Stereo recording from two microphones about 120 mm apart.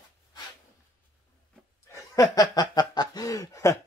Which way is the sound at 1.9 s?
25° left (ahead or behind).